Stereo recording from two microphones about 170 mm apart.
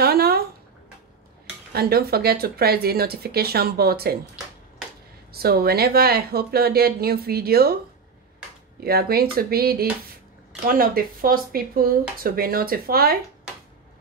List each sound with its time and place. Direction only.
0.0 s a sound: 65° right (ahead or behind)
1.7 s speech: 65° right (ahead or behind)
5.3 s speech: 65° right (ahead or behind)
8.8 s speech: 65° right (ahead or behind)